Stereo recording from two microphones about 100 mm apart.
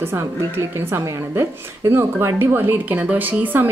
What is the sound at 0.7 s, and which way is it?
A woman's voice, 25° right (ahead or behind).